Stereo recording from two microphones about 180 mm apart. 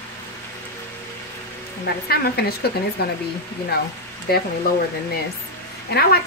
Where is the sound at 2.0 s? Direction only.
60° left (ahead or behind).